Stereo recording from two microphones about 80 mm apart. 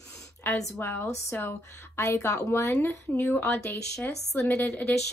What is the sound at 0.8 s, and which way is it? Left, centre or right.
Speech, left.